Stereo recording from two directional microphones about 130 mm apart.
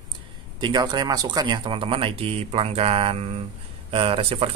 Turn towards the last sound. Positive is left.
turn(degrees=-45)  # may be behind; listen again after turning